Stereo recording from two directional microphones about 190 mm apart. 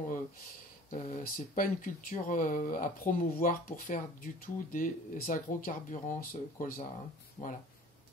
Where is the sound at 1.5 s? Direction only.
45° left (ahead or behind).